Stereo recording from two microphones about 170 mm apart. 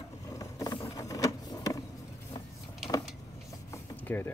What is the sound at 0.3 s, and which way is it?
Vehicle, 20° left (ahead or behind).